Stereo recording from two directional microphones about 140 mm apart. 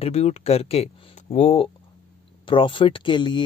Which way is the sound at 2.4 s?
35° left (ahead or behind).